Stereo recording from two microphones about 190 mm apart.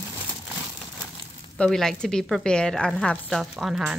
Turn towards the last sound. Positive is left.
turn(degrees=-5)  # may be behind; listen again after turning